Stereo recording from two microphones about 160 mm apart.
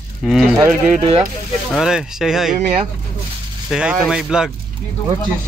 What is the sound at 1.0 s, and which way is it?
Speech, 35° right (ahead or behind).